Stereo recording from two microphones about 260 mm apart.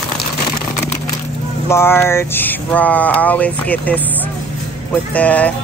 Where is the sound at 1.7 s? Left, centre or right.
Centre.